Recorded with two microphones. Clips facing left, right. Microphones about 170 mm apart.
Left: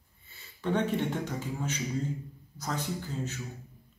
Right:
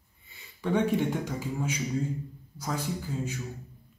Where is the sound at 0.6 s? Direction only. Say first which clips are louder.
Right 3 dB; 10° right (ahead or behind).